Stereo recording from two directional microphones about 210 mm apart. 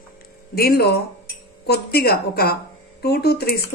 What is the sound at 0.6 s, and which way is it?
Speech, 50° left (ahead or behind).